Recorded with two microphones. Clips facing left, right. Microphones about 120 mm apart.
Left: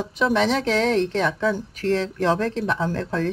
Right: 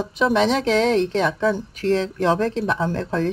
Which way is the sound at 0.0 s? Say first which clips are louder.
Right 2 dB; 20° right (ahead or behind).